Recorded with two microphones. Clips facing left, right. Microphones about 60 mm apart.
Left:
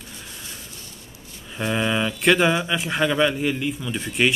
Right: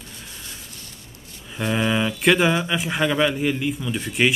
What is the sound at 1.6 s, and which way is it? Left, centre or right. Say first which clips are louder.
Speech: right 1 dB; centre.